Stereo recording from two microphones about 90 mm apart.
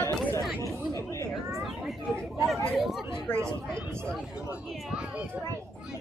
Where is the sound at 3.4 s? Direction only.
30° right (ahead or behind).